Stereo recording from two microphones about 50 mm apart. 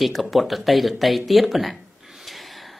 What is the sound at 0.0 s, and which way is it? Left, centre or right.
Speech, centre.